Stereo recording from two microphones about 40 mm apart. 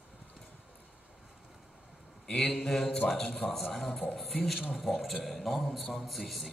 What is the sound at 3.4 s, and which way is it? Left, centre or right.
Speech, left.